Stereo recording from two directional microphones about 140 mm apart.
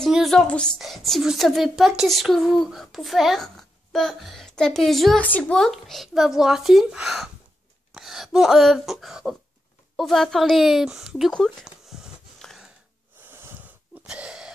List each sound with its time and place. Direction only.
0.0 s a woman's voice: centre (ahead or behind)
13.2 s wheeze: 15° right (ahead or behind)
14.0 s a sound: 5° right (ahead or behind)